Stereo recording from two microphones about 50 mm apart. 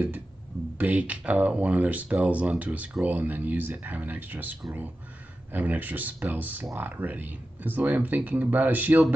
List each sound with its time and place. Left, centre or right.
0.7 s speech: right